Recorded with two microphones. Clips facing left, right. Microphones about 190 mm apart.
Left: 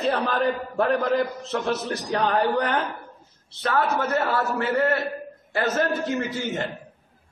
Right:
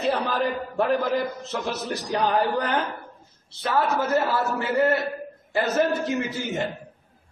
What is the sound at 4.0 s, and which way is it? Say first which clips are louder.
Speech: right 1 dB; centre (ahead or behind).